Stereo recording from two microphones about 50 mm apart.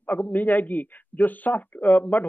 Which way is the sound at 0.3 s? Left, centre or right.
Left.